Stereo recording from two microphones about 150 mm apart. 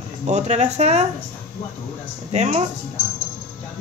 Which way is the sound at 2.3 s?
50° right (ahead or behind).